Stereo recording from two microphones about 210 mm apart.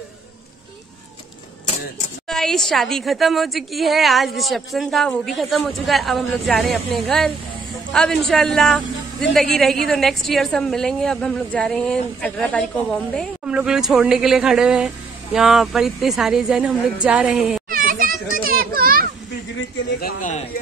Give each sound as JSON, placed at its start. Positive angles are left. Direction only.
{"t": 2.2, "sound": "a woman's voice", "side_deg": 0}
{"t": 17.6, "sound": "children playing", "side_deg": -45}
{"t": 20.0, "sound": "a sound", "side_deg": 40}